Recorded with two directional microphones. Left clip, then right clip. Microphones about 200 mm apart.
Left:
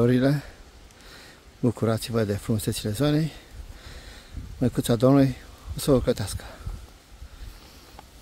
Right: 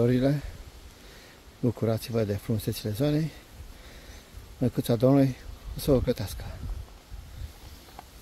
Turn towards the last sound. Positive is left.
turn(degrees=20)  # may be behind; listen again after turning